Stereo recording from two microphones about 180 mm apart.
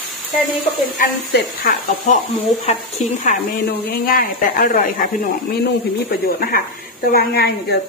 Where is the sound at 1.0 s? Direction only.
50° left (ahead or behind).